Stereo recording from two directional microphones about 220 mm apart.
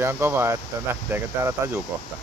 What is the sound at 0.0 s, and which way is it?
Speech, 10° right (ahead or behind).